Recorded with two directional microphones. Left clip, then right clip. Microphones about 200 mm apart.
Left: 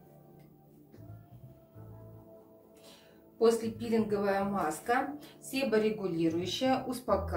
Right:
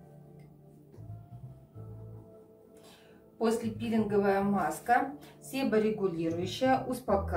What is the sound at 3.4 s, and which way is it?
A woman's voice, 20° left (ahead or behind).